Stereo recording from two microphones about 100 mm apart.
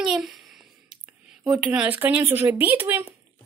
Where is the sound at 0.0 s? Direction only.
5° right (ahead or behind).